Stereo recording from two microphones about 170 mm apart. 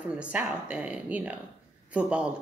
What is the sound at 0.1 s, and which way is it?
A woman's voice, 5° right (ahead or behind).